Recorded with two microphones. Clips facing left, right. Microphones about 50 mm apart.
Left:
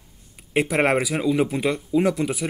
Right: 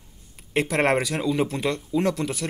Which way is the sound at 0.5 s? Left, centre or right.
Centre.